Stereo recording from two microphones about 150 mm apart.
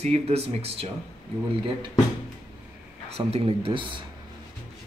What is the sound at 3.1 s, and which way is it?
Speech, 40° right (ahead or behind).